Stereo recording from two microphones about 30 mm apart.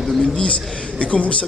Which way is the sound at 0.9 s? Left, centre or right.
Left.